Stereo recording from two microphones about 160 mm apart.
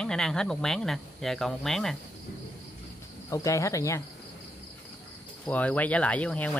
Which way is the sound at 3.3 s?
20° left (ahead or behind).